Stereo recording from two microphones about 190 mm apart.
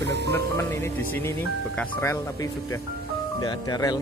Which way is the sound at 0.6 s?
15° left (ahead or behind).